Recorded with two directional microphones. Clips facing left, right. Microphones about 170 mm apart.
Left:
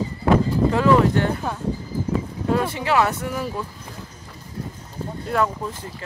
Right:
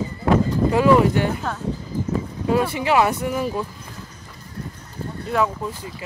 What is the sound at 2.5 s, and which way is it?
Speech, 10° right (ahead or behind).